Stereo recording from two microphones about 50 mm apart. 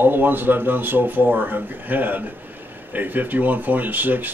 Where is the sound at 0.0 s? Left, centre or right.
Right.